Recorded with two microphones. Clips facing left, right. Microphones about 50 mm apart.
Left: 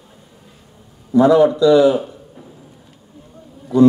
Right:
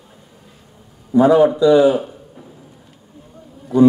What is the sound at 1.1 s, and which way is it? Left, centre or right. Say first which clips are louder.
A man's voice: even; right.